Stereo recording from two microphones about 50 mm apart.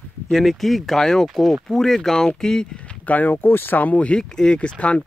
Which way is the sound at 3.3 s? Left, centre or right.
Left.